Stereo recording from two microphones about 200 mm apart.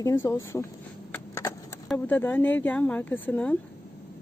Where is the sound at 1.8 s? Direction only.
10° left (ahead or behind).